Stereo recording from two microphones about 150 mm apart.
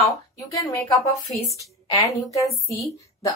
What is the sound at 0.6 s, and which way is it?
Speech, 20° left (ahead or behind).